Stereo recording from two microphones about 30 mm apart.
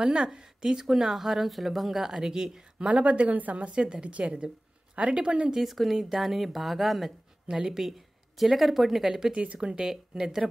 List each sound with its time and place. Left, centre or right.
0.0 s a woman's voice: right
0.7 s speech: centre
2.1 s a woman's voice: right
3.1 s speech: right
3.7 s a woman's voice: right
5.6 s speech: centre
7.4 s a woman's voice: right
8.4 s speech: centre
9.6 s a woman's voice: right
9.8 s speech: centre